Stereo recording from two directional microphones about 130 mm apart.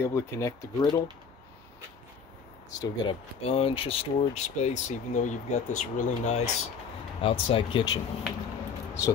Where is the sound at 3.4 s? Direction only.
50° left (ahead or behind); by 6.5 s 65° left (ahead or behind).